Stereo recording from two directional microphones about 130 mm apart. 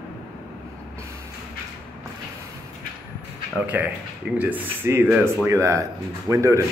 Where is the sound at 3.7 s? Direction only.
10° right (ahead or behind).